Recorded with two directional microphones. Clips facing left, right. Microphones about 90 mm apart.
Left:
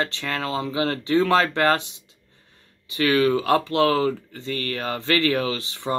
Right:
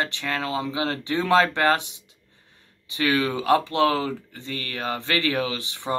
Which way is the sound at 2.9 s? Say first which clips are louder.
Left 4 dB; 25° right (ahead or behind).